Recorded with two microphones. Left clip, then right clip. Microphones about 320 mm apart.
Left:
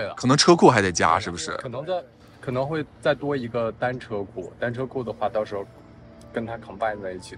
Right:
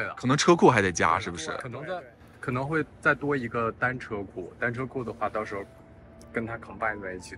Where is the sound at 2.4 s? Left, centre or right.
Centre.